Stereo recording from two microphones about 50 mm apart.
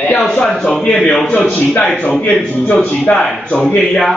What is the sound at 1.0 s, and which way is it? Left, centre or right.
Speech, centre.